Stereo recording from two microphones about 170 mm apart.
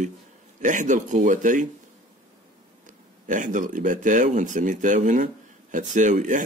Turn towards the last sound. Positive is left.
turn(degrees=-45)  # may be behind; listen again after turning